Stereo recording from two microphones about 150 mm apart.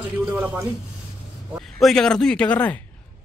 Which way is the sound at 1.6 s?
Centre (ahead or behind).